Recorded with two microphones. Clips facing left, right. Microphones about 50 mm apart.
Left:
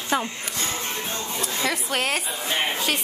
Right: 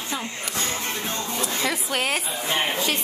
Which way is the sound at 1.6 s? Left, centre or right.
Centre.